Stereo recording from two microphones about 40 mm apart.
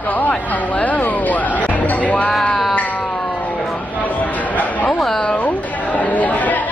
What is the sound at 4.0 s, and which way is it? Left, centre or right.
Chatter, left.